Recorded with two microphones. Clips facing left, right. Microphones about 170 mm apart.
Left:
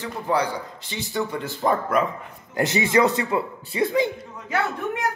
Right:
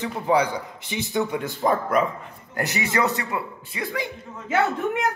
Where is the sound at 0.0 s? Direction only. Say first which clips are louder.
Right 2 dB; 20° right (ahead or behind).